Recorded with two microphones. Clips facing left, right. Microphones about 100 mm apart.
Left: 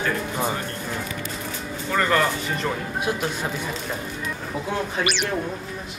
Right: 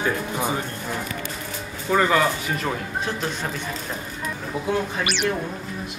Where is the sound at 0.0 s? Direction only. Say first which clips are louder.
Even; 15° right (ahead or behind).